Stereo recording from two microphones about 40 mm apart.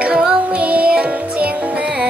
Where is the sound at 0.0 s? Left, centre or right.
Right.